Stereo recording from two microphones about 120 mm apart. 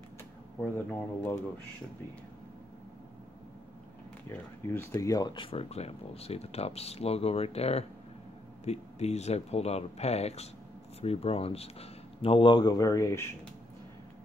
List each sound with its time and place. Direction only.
0.6 s speech: 15° left (ahead or behind)
4.3 s speech: 20° left (ahead or behind)
4.9 s speech: 30° left (ahead or behind)